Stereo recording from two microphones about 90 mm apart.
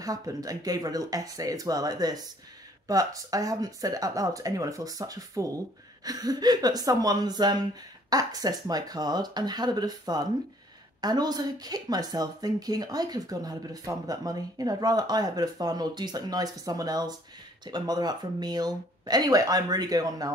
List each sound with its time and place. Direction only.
0.0 s speech: 40° right (ahead or behind)